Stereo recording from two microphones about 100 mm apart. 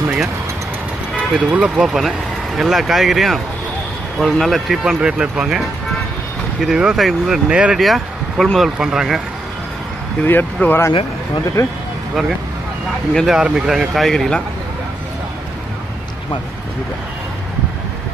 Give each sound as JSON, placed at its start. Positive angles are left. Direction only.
{"t": 1.5, "sound": "speech", "side_deg": -10}
{"t": 10.2, "sound": "speech", "side_deg": 20}
{"t": 11.6, "sound": "speech", "side_deg": 30}
{"t": 13.1, "sound": "speech", "side_deg": 0}